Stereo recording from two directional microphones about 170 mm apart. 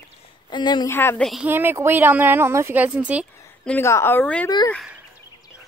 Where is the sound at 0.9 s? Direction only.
15° left (ahead or behind).